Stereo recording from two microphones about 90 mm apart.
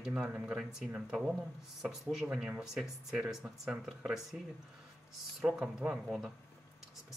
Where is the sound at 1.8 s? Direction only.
10° right (ahead or behind).